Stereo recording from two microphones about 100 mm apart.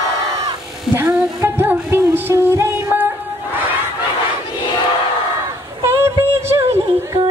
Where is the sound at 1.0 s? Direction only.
25° right (ahead or behind).